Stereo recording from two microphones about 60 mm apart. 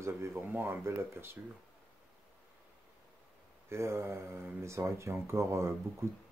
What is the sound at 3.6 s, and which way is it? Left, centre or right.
Speech, right.